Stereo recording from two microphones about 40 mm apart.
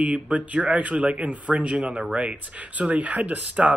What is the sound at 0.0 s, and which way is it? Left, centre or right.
Speech, right.